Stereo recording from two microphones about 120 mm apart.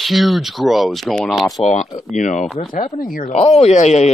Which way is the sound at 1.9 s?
85° left.